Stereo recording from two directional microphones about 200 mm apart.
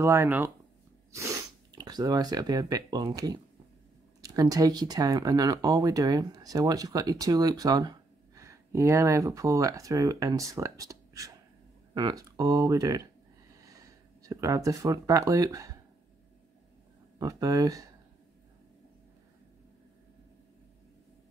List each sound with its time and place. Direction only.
0.0 s speech: 15° right (ahead or behind)
1.7 s speech: 20° right (ahead or behind)
14.2 s speech: 15° right (ahead or behind)
17.2 s speech: 15° right (ahead or behind)